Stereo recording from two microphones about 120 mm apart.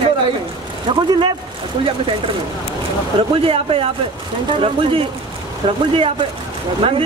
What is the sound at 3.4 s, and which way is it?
Speech, 50° right (ahead or behind).